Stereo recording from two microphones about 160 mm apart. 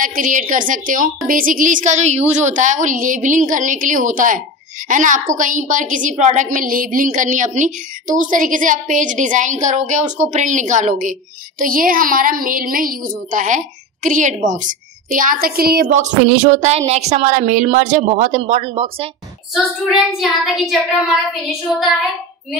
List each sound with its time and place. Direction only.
0.0 s a woman's voice: 55° right (ahead or behind)
16.6 s a woman's voice: 40° right (ahead or behind)
18.4 s speech: 35° right (ahead or behind)
19.5 s child singing: centre (ahead or behind)